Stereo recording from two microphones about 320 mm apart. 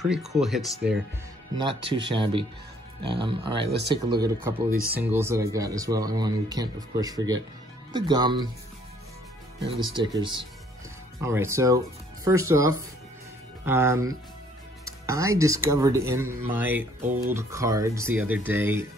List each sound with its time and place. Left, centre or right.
0.0 s speech: centre
1.6 s speech: centre
9.8 s speech: centre